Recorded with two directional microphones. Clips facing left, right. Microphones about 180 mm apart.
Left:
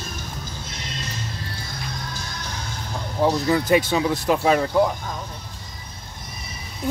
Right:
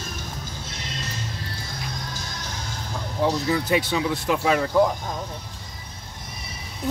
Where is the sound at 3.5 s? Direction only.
50° left (ahead or behind).